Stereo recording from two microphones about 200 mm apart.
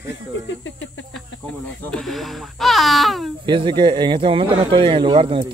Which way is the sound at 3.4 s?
25° right (ahead or behind).